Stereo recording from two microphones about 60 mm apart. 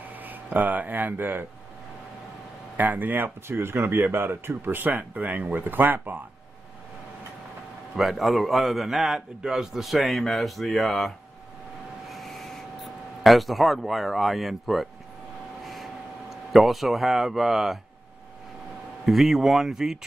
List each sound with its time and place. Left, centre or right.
0.1 s speech: right
2.8 s speech: right
3.4 s speech: right
4.9 s speech: right
7.9 s a man's voice: centre
12.1 s writing: centre
15.6 s a sound: centre
19.0 s a man's voice: centre